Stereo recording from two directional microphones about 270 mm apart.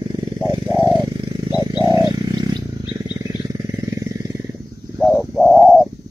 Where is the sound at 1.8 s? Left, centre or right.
Centre.